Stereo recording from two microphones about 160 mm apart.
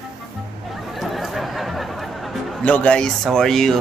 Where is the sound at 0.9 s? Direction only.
Centre (ahead or behind).